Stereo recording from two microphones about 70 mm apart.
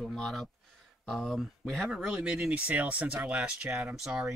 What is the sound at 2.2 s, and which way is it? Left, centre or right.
Speech, centre.